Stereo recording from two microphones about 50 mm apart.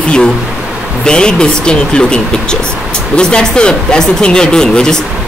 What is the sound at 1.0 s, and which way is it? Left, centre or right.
Speech, centre.